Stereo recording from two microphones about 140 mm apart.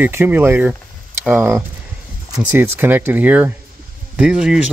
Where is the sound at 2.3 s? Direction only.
15° right (ahead or behind).